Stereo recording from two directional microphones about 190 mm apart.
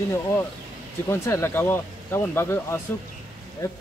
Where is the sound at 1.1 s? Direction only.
15° left (ahead or behind).